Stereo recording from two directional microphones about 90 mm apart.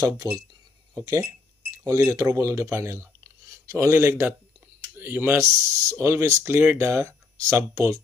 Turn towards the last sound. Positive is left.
turn(degrees=-30)  # may be behind; listen again after turning